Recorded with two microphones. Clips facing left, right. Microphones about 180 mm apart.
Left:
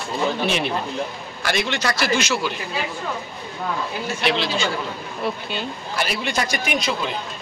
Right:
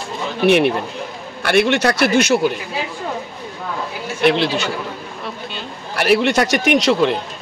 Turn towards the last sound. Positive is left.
turn(degrees=-70)  # may be behind; listen again after turning